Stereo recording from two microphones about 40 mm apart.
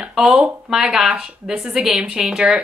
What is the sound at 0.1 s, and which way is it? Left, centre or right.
Speech, centre.